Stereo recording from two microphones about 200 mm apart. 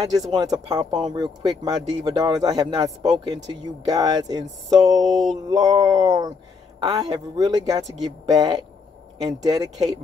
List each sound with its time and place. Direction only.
0.0 s speech: 20° right (ahead or behind)